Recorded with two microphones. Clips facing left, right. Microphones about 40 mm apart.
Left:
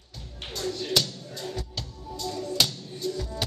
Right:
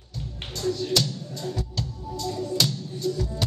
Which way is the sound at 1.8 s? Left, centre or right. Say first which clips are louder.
Right 4 dB; centre.